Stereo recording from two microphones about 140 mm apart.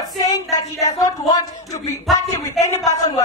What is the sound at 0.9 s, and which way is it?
A woman's voice, 25° left (ahead or behind).